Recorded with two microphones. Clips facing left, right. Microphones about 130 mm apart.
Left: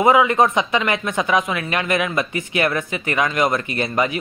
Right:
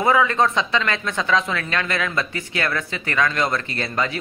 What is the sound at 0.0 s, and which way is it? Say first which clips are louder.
Speech: left 3 dB; 15° left (ahead or behind).